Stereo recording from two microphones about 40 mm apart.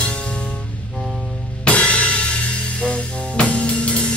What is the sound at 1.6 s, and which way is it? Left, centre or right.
Music, left.